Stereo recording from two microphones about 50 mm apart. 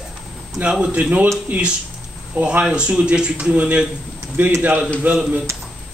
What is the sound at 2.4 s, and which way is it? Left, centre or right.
A man's voice, right.